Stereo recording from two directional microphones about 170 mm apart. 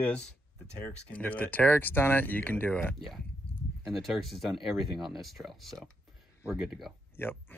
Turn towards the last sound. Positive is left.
turn(degrees=10)  # may be behind; listen again after turning